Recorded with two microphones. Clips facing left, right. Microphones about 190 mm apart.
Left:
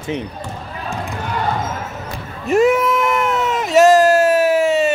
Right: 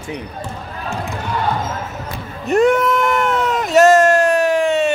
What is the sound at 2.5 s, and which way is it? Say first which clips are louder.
Sheep: even; centre (ahead or behind).